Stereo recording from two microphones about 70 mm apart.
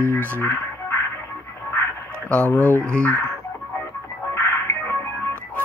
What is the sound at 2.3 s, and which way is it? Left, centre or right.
Speech, left.